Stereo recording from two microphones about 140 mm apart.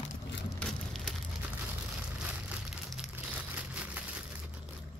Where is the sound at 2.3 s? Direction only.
5° right (ahead or behind).